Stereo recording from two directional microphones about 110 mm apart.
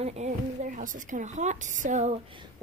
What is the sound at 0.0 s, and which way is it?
A woman's voice, 80° right.